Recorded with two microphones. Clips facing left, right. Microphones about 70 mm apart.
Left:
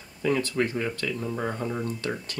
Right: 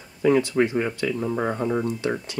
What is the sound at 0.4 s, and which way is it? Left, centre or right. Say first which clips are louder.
Speech: right 5 dB; centre.